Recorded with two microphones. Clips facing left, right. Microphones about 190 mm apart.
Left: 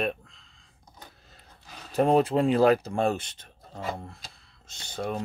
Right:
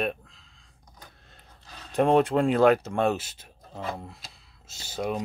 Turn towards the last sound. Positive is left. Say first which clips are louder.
# right 2 dB
turn(degrees=-10)  # may be behind; listen again after turning